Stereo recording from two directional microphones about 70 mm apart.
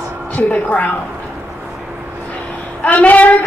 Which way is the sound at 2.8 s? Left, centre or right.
Left.